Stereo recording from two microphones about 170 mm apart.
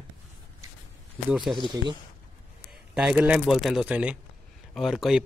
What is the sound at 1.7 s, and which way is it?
Speech, 25° right (ahead or behind).